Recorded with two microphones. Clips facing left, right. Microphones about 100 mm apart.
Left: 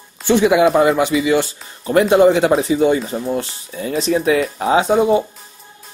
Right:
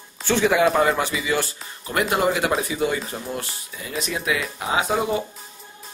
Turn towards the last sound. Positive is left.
turn(degrees=30)  # may be behind; listen again after turning